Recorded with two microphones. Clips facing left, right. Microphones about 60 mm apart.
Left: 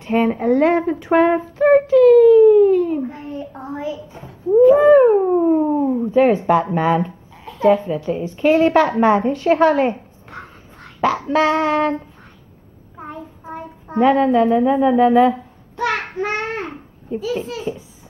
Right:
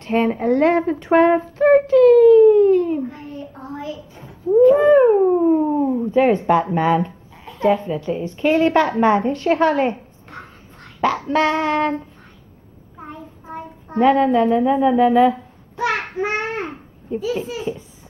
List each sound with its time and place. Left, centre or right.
0.0 s a sound: centre
3.0 s a sound: centre
4.5 s a sound: centre
6.7 s speech: centre
8.1 s child singing: centre
8.5 s a woman's voice: centre
11.2 s child singing: centre
13.0 s child singing: centre
15.8 s babbling: centre